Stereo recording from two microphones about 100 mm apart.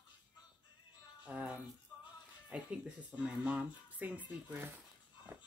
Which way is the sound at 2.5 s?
10° right (ahead or behind).